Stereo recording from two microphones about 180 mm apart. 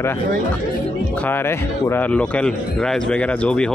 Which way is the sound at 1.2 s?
10° left (ahead or behind).